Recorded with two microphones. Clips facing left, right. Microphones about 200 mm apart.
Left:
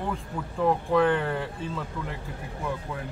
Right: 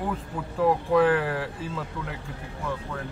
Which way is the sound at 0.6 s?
5° right (ahead or behind).